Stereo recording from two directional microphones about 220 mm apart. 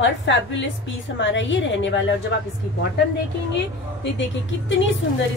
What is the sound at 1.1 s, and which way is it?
Speech, 55° left (ahead or behind).